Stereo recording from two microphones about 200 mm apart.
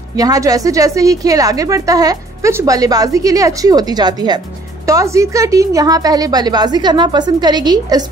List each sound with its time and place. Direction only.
0.1 s a woman's voice: 15° right (ahead or behind)